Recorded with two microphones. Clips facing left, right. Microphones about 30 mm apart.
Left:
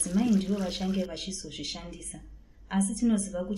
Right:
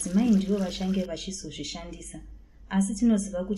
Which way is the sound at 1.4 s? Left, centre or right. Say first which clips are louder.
Right 1 dB; left.